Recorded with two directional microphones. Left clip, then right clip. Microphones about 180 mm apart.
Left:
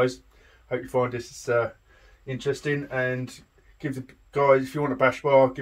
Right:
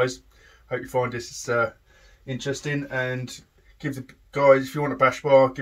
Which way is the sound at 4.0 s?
30° left (ahead or behind).